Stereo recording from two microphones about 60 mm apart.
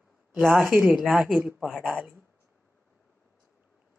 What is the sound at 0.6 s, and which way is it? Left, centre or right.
Speech, right.